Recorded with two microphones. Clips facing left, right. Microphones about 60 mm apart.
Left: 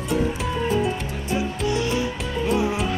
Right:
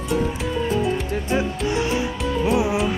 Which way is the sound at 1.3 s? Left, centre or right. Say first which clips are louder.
Even; right.